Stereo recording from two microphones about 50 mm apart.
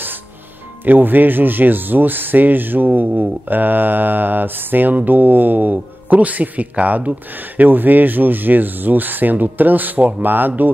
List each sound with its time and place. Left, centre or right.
0.8 s speech: right